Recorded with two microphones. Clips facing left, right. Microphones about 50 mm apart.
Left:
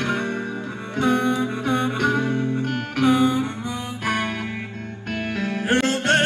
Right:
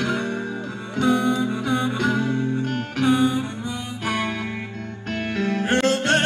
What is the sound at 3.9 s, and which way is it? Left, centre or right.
Music, left.